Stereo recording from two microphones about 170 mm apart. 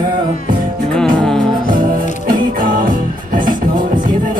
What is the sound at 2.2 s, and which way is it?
Music, 55° right (ahead or behind).